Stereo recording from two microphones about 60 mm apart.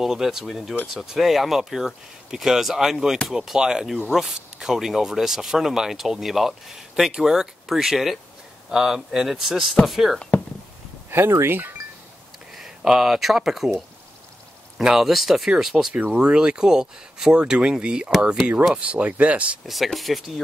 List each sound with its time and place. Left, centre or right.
0.0 s speech: centre
11.1 s speech: right
12.5 s speech: centre
19.6 s speech: centre